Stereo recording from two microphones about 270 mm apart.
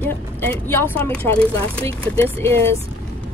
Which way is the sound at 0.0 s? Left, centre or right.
Centre.